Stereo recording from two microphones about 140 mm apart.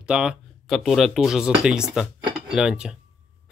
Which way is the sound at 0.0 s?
5° right (ahead or behind).